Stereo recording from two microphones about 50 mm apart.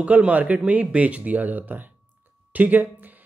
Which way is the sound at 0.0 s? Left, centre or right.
Right.